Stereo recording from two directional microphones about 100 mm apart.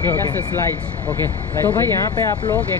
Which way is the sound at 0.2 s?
30° left (ahead or behind).